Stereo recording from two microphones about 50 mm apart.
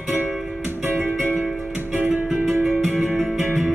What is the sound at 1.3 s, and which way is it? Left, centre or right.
Music, centre.